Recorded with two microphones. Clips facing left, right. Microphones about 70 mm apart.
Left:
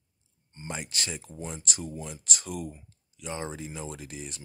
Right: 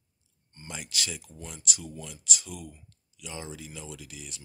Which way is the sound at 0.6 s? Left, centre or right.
Left.